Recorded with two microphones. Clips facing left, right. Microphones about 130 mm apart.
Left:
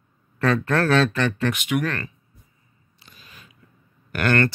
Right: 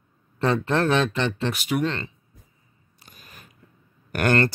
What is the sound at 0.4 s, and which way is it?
Speech, 25° right (ahead or behind).